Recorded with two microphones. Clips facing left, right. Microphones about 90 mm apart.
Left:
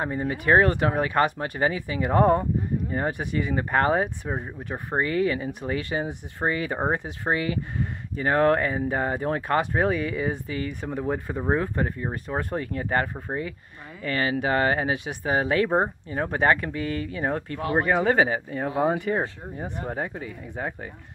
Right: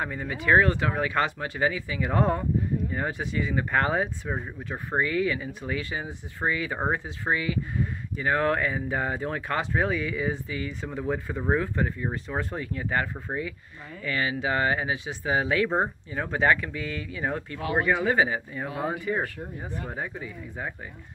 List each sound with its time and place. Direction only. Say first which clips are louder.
0.0 s speech: left 3 dB; 35° left (ahead or behind); by 3.5 s 55° left (ahead or behind)
3.5 s speech: left 3 dB; 45° left (ahead or behind)
5.8 s speech: left 7 dB; 60° left (ahead or behind)
6.4 s speech: left 2 dB; 45° left (ahead or behind)
12.0 s speech: left 1 dB; 30° left (ahead or behind)
12.4 s speech: left 5 dB; 50° left (ahead or behind)
18.7 s speech: left 7 dB; 30° left (ahead or behind)
19.6 s speech: left 5 dB; 45° left (ahead or behind)